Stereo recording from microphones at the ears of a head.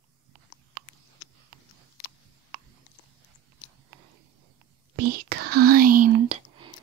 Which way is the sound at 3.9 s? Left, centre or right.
Right.